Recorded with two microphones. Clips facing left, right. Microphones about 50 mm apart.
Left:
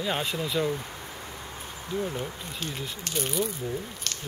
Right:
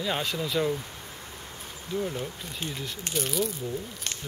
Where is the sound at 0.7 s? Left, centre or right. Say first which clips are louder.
Left 1 dB; centre.